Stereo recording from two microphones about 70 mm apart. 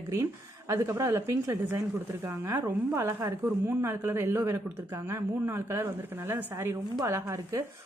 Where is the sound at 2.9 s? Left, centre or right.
Right.